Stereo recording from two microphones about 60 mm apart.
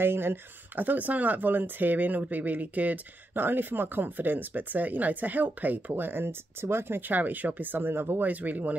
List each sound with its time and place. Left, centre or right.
0.0 s speech: right